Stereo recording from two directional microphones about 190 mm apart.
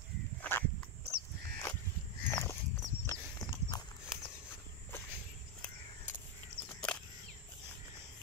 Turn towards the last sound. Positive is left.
turn(degrees=5)  # may be behind; listen again after turning